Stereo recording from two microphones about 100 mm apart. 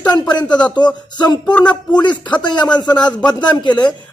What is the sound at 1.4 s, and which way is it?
Speech, 10° left (ahead or behind).